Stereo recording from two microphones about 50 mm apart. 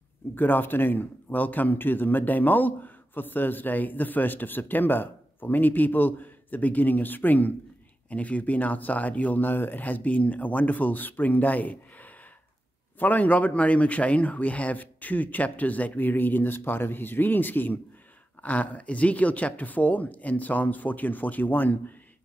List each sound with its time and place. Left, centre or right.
0.3 s speech: left